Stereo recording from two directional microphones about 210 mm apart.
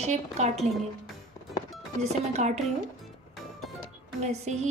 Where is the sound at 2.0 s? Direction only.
30° right (ahead or behind).